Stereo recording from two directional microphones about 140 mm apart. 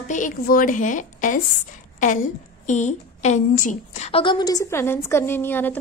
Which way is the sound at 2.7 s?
60° left (ahead or behind).